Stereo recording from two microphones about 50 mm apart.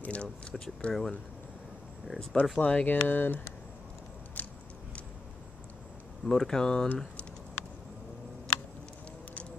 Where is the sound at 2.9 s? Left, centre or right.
Left.